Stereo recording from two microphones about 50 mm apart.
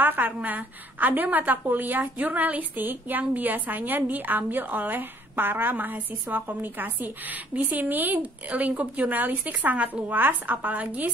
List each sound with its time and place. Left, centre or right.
0.0 s a woman's voice: right